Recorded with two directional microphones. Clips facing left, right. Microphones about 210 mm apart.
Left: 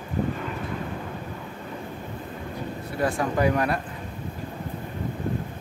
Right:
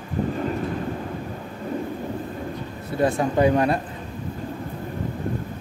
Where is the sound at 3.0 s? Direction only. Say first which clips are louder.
Right 4 dB; 25° right (ahead or behind).